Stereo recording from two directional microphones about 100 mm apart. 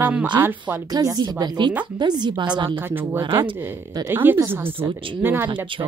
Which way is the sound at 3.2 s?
55° right (ahead or behind).